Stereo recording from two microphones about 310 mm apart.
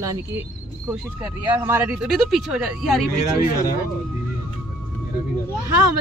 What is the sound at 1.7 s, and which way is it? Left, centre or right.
Speech, centre.